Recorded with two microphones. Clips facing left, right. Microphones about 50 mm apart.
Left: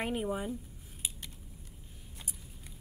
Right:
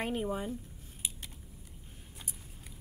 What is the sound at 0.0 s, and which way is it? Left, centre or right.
Speech, centre.